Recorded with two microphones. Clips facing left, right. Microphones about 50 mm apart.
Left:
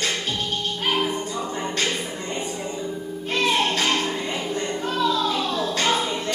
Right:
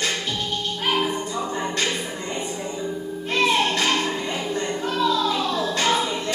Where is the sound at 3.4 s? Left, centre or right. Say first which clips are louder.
Right 1 dB; right.